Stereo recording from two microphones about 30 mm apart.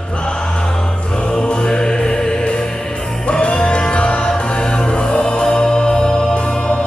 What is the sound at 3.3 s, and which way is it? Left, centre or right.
Music, left.